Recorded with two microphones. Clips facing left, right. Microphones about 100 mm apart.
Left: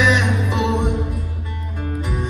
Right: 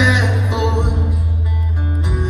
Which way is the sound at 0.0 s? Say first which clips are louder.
Even; 15° right (ahead or behind).